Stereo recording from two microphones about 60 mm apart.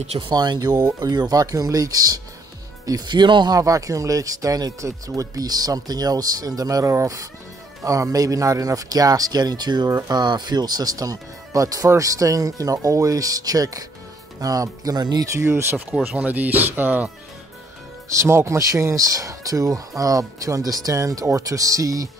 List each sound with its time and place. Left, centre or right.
0.6 s speech: right
3.5 s speech: right
6.9 s speech: right
15.3 s speech: right
15.7 s speech: right
18.2 s speech: right